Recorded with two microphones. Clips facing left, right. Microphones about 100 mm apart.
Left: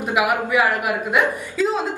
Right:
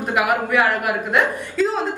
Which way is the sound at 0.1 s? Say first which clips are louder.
Even; 10° left (ahead or behind).